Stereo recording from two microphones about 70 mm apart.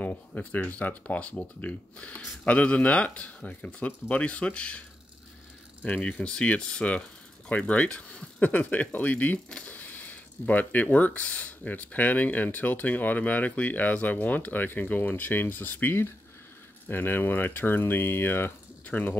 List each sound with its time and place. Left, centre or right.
0.0 s speech: left
5.9 s speech: left